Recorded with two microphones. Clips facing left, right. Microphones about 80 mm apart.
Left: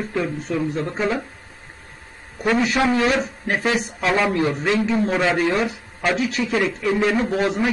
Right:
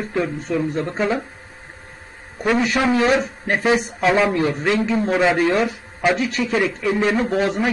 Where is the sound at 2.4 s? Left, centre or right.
Centre.